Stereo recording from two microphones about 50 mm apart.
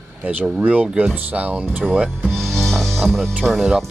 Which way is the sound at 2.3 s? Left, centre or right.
Centre.